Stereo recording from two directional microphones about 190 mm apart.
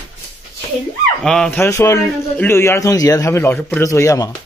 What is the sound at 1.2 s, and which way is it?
Speech, centre (ahead or behind).